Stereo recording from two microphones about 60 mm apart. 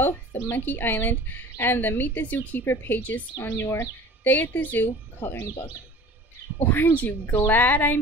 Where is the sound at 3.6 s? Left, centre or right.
Left.